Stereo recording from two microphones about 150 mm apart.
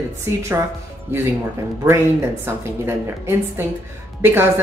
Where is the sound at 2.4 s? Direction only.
15° right (ahead or behind).